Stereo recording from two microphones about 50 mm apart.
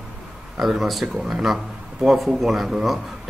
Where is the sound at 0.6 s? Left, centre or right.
Centre.